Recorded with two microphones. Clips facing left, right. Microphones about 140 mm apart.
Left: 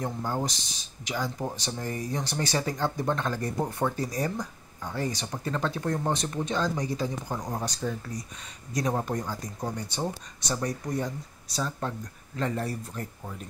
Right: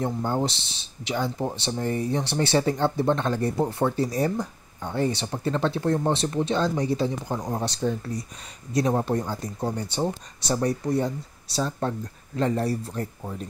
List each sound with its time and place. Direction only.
0.0 s speech: 25° right (ahead or behind)